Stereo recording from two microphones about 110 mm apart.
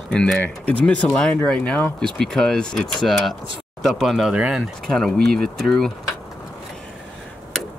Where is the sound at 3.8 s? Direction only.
Centre (ahead or behind).